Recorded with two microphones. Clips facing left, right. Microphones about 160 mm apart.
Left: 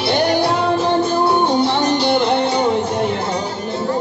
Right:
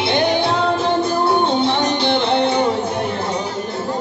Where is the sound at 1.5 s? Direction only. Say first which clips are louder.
Left 2 dB; 25° right (ahead or behind).